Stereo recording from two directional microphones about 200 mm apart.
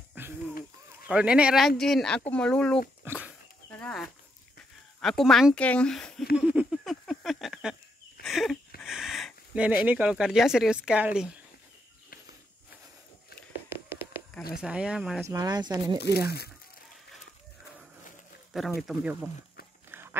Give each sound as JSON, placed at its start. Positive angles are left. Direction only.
{"t": 0.2, "sound": "a sound", "side_deg": -10}
{"t": 1.0, "sound": "speech", "side_deg": -5}
{"t": 3.0, "sound": "dog", "side_deg": -10}
{"t": 5.0, "sound": "speech", "side_deg": 0}
{"t": 6.3, "sound": "a sound", "side_deg": -5}
{"t": 9.8, "sound": "speech", "side_deg": -5}
{"t": 13.7, "sound": "tap", "side_deg": -10}
{"t": 14.5, "sound": "speech", "side_deg": -5}
{"t": 15.2, "sound": "speech", "side_deg": -20}
{"t": 16.3, "sound": "speech", "side_deg": 55}
{"t": 18.8, "sound": "speech", "side_deg": 0}
{"t": 19.9, "sound": "dog", "side_deg": -10}